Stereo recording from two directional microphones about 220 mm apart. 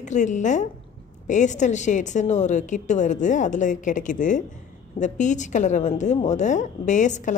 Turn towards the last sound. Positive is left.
turn(degrees=35)  # may be behind; listen again after turning